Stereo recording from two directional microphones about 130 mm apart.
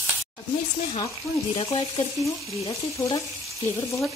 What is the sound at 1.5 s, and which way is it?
Frying, 40° left (ahead or behind).